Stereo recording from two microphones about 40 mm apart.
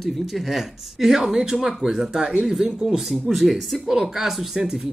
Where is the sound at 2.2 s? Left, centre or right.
Right.